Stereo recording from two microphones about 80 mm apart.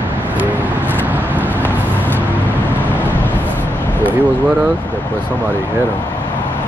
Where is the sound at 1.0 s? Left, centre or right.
Right.